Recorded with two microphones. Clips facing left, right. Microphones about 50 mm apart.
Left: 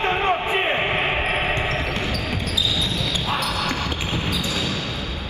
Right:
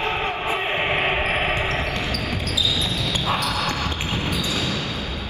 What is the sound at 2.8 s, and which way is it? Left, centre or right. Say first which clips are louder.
Basketball bounce: even; right.